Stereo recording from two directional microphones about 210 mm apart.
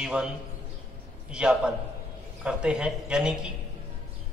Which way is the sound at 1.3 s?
5° right (ahead or behind).